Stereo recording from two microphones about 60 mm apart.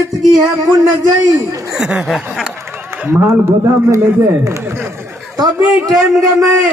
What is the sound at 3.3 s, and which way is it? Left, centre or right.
Speech, right.